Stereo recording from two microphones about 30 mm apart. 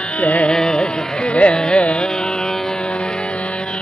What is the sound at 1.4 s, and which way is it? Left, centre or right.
Carnatic music, left.